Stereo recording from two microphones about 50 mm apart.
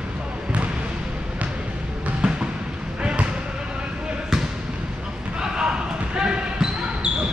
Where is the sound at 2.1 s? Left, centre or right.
Centre.